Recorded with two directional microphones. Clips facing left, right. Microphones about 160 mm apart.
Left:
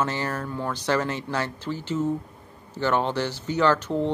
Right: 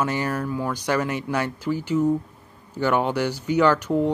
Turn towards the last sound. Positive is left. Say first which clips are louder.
# right 3 dB
turn(degrees=-10)  # may be behind; listen again after turning